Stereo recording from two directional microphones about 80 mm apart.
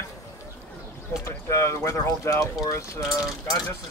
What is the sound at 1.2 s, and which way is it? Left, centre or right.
Speech, left.